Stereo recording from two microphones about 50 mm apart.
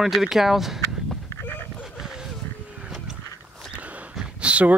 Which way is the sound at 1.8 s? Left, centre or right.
Centre.